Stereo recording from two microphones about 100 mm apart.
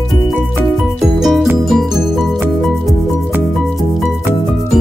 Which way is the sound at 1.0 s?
5° right (ahead or behind).